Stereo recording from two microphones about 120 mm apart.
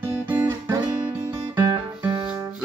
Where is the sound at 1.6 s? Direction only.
35° right (ahead or behind).